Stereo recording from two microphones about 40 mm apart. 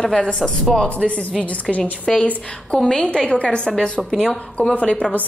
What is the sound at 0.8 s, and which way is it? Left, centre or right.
A woman's voice, left.